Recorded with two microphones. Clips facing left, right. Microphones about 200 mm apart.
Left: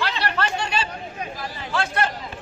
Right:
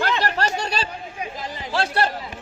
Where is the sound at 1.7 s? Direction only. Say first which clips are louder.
Right 2 dB; 35° right (ahead or behind).